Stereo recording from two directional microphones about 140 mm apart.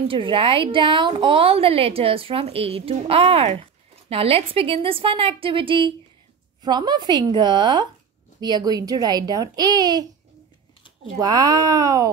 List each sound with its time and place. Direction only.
0.1 s a woman's voice: 35° right (ahead or behind)
11.1 s a child's voice: 30° right (ahead or behind)